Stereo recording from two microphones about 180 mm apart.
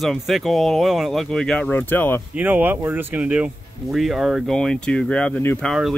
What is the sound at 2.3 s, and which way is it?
Speech, 10° right (ahead or behind).